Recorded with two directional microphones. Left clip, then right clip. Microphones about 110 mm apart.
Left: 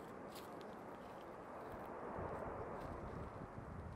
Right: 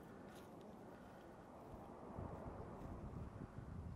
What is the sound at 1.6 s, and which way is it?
Vehicle, 35° right (ahead or behind).